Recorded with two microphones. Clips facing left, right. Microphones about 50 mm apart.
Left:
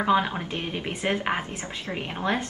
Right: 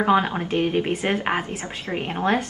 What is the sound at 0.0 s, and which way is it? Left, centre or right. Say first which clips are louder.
Speech: right 3 dB; centre.